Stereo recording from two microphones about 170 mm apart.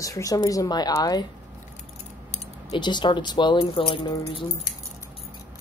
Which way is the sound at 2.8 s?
25° left (ahead or behind).